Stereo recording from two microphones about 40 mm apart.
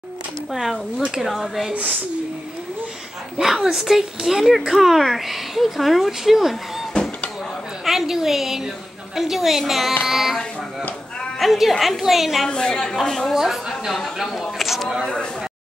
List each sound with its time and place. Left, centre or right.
0.5 s speech: centre
3.4 s speech: centre
7.8 s speech: centre
12.4 s a woman's voice: centre
13.3 s speech: centre